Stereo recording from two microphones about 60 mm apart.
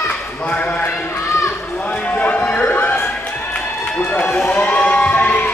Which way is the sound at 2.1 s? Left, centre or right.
Left.